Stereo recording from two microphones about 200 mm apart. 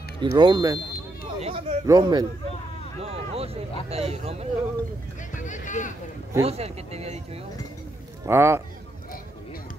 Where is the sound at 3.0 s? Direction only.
30° right (ahead or behind).